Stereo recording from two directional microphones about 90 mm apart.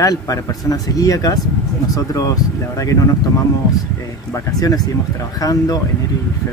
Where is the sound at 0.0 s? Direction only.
40° left (ahead or behind).